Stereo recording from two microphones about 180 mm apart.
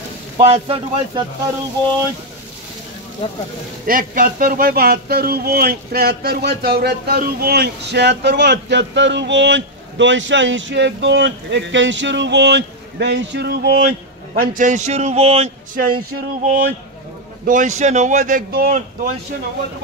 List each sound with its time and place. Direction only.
0.4 s a man's voice: 30° right (ahead or behind)
3.2 s speech: 30° left (ahead or behind)
3.8 s speech: 50° right (ahead or behind)
14.4 s a man's voice: 45° right (ahead or behind)
16.1 s a sound: 55° right (ahead or behind)
17.5 s speech: 45° right (ahead or behind)